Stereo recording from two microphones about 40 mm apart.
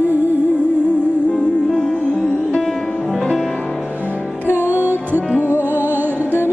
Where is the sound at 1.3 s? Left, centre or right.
Left.